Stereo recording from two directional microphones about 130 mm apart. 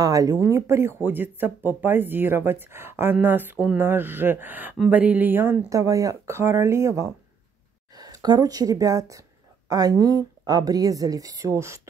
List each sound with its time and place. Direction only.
0.0 s speech: 30° right (ahead or behind)